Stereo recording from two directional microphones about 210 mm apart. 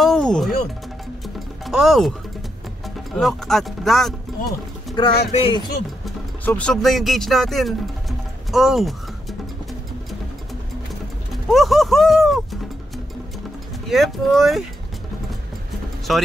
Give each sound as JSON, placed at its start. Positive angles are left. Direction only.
{"t": 0.0, "sound": "music", "side_deg": 5}
{"t": 3.2, "sound": "speech", "side_deg": 0}
{"t": 5.0, "sound": "speech", "side_deg": 20}
{"t": 6.0, "sound": "speech", "side_deg": 5}
{"t": 11.5, "sound": "a sound", "side_deg": 0}
{"t": 13.8, "sound": "speech", "side_deg": 0}
{"t": 16.1, "sound": "speech", "side_deg": 0}